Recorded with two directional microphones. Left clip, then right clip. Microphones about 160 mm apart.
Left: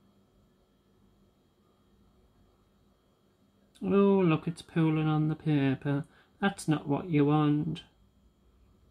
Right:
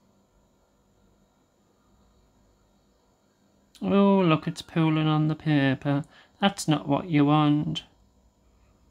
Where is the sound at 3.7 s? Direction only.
35° right (ahead or behind).